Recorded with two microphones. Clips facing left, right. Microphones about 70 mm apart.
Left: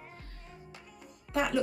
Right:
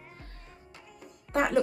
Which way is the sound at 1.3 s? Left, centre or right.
Right.